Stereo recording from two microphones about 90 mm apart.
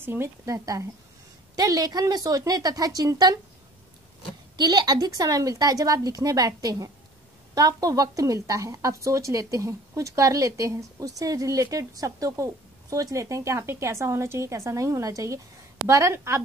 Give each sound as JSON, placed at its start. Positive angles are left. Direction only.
{"t": 0.0, "sound": "a woman's voice", "side_deg": -25}
{"t": 1.5, "sound": "speech", "side_deg": -45}
{"t": 4.6, "sound": "a woman's voice", "side_deg": -50}